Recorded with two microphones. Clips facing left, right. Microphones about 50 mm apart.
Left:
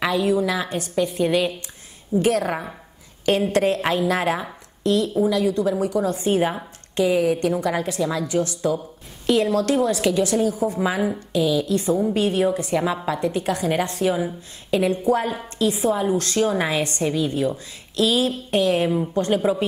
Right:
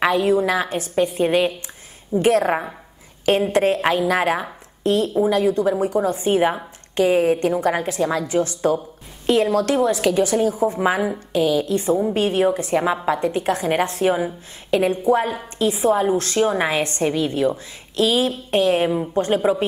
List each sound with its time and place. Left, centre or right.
0.0 s a woman's voice: right
9.8 s a woman's voice: centre
10.1 s a woman's voice: right